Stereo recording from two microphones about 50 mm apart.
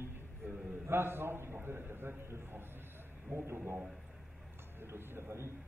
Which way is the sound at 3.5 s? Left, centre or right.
Right.